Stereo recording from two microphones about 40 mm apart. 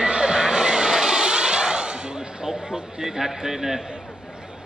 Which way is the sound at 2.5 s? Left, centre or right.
Centre.